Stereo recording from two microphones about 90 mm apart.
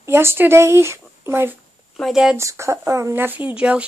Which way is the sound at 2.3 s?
35° right (ahead or behind).